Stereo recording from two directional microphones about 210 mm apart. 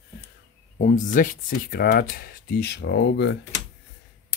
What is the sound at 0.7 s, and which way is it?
Speech, 40° left (ahead or behind).